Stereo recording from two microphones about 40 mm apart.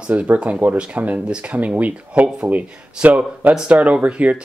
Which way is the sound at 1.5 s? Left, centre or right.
Right.